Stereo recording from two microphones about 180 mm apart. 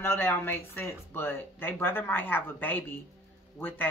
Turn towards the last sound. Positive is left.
turn(degrees=10)  # may be behind; listen again after turning